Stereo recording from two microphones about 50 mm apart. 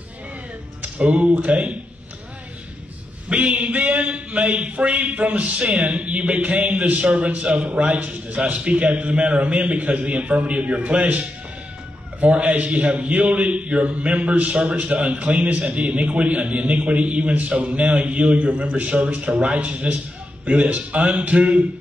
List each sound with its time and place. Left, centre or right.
0.8 s a man's voice: right
3.3 s a man's voice: right